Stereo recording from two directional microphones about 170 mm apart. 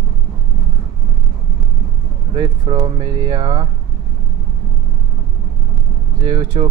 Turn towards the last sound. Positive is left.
turn(degrees=-30)  # may be behind; listen again after turning